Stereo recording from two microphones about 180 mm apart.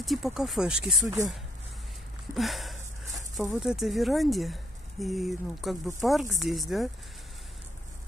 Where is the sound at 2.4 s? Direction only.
Centre (ahead or behind).